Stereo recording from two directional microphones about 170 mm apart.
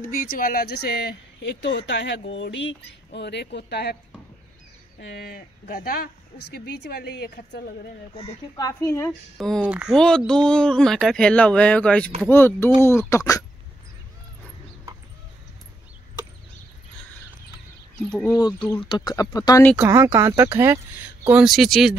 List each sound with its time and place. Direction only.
0.0 s speech: 55° left (ahead or behind); by 4.0 s 75° left (ahead or behind)
5.0 s speech: 70° left (ahead or behind)
6.6 s speech: 75° left (ahead or behind)
8.5 s speech: 20° left (ahead or behind)
9.4 s speech: 5° right (ahead or behind)
9.9 s speech: 5° left (ahead or behind)
18.8 s speech: 25° left (ahead or behind)
19.8 s speech: 15° right (ahead or behind)